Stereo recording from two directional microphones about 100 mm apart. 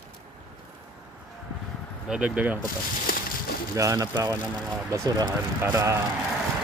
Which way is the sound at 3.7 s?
35° right (ahead or behind).